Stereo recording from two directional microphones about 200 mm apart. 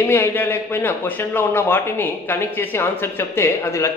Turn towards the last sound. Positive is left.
turn(degrees=15)  # may be behind; listen again after turning